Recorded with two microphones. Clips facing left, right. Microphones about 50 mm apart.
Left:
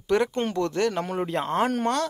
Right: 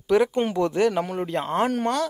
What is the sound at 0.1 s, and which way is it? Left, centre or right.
Speech, centre.